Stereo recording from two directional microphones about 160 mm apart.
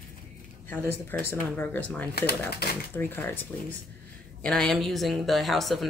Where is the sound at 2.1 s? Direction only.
80° left.